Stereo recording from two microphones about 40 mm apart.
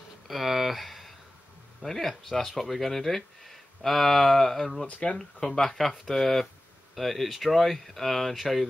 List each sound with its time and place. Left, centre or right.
0.3 s a sound: centre
1.8 s speech: centre
4.8 s speech: left
5.2 s speech: centre